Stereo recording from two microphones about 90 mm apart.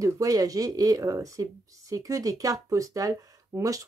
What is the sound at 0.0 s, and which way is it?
Speech, 40° right (ahead or behind).